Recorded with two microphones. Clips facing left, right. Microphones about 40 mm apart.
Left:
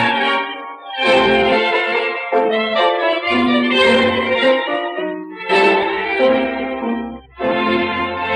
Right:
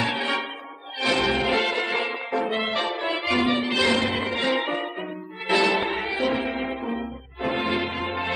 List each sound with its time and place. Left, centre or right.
0.0 s music: left
3.5 s music: left